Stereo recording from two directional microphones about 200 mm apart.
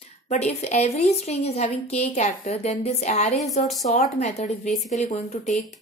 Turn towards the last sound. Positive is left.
turn(degrees=35)  # may be behind; listen again after turning